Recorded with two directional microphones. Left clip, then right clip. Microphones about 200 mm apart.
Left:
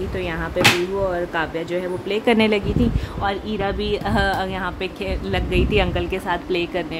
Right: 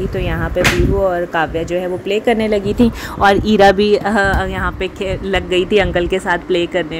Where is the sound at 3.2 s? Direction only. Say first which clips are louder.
Right 14 dB; 45° right (ahead or behind).